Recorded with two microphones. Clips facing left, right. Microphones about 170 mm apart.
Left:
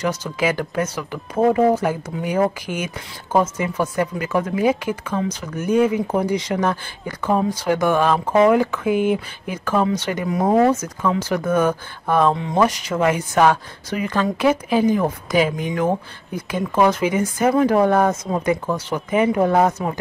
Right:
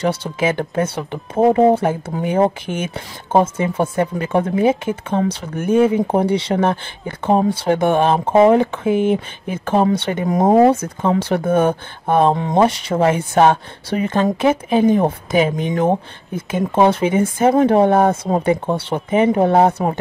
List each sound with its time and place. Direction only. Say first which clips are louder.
0.0 s speech: right 3 dB; 30° right (ahead or behind)
10.2 s speech: right 5 dB; 45° right (ahead or behind)
10.5 s speech: right 4 dB; 30° right (ahead or behind)